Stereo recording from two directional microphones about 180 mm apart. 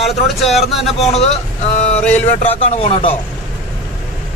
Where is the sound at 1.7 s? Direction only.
40° left (ahead or behind).